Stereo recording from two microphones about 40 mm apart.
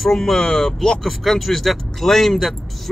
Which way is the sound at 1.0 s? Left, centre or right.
Centre.